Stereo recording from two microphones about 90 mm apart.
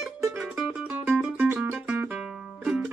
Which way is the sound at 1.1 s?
20° right (ahead or behind).